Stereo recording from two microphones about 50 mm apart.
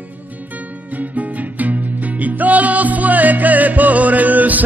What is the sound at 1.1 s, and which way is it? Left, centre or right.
Music, right.